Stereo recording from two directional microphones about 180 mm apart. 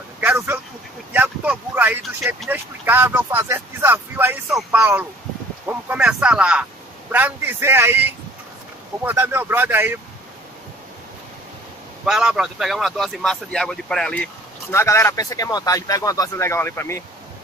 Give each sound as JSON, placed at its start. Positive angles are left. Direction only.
{"t": 0.2, "sound": "vehicle", "side_deg": -10}
{"t": 1.1, "sound": "a man's voice", "side_deg": -10}
{"t": 12.0, "sound": "speech", "side_deg": -5}